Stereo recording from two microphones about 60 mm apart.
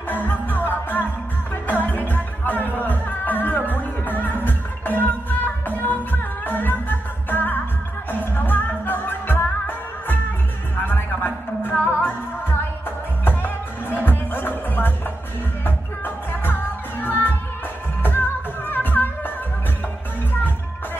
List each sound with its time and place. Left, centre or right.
0.1 s music: left